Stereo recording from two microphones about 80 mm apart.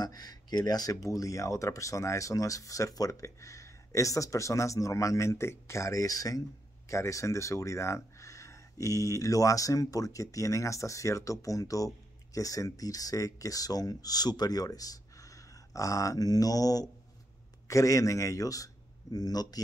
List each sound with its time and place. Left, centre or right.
0.0 s speech: left